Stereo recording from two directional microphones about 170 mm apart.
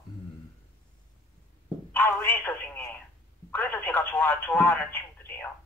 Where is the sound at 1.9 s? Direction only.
10° left (ahead or behind).